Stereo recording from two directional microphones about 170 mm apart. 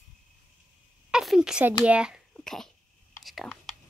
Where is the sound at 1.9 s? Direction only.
5° right (ahead or behind).